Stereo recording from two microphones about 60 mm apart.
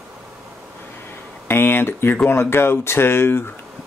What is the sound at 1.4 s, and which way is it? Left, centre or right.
Speech, left.